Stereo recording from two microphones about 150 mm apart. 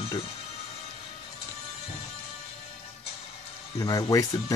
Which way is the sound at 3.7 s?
25° left (ahead or behind).